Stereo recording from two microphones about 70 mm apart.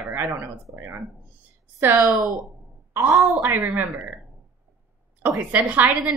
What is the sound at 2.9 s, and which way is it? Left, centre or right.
Speech, right.